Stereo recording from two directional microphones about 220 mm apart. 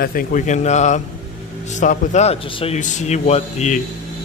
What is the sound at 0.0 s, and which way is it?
A man's voice, 40° left (ahead or behind).